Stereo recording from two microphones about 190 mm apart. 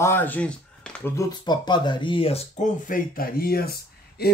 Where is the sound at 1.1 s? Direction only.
20° left (ahead or behind).